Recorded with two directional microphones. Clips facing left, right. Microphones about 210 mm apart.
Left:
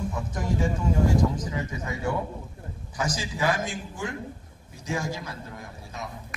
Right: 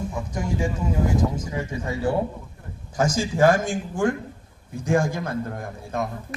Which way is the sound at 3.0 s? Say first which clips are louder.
Right 9 dB; 45° right (ahead or behind).